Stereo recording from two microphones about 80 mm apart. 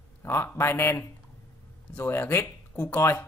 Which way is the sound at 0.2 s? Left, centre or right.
Left.